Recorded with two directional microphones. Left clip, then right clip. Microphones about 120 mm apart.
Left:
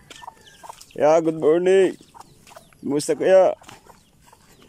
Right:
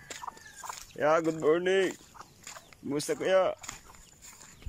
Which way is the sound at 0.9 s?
55° left (ahead or behind).